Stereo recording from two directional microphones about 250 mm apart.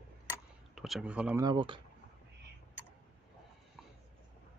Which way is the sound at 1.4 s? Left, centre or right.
Centre.